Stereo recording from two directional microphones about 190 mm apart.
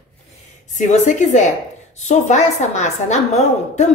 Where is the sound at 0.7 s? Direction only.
40° left (ahead or behind).